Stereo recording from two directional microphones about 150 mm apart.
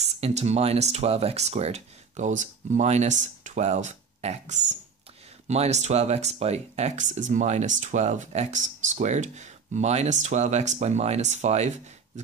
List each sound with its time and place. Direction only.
0.0 s speech: 45° right (ahead or behind)